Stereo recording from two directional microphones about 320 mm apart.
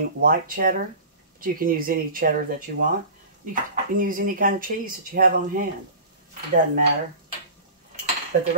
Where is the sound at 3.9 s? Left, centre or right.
Right.